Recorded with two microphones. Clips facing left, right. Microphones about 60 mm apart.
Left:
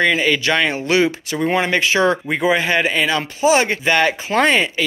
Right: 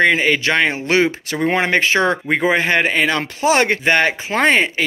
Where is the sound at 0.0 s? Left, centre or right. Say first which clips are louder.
Right 2 dB; right.